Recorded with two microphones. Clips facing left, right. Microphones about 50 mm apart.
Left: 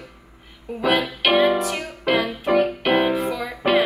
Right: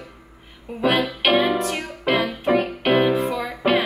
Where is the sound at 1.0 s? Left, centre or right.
Centre.